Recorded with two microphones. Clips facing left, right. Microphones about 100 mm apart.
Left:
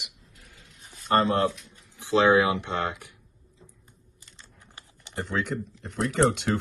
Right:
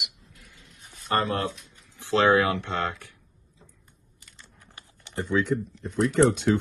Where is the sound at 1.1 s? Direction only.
25° left (ahead or behind).